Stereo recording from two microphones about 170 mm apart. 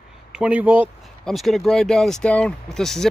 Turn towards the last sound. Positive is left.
turn(degrees=5)  # may be behind; listen again after turning